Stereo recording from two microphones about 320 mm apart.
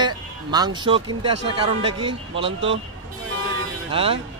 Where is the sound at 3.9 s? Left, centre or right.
Centre.